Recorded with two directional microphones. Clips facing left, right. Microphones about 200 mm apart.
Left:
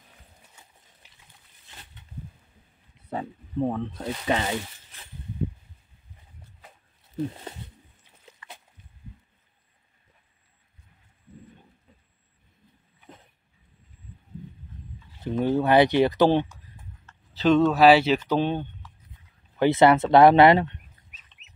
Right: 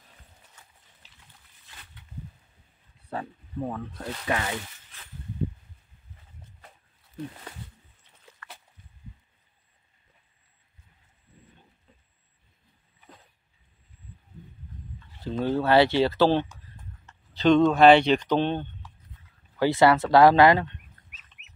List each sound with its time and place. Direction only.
0.6 s horse: 15° left (ahead or behind)
3.0 s speech: 20° left (ahead or behind)
7.2 s speech: 25° left (ahead or behind)
8.3 s a sound: 20° left (ahead or behind)
15.0 s a sound: 15° left (ahead or behind)
17.3 s speech: 5° left (ahead or behind)
19.5 s speech: 20° left (ahead or behind)